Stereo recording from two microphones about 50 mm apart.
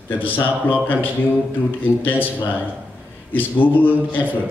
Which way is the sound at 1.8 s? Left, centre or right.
Left.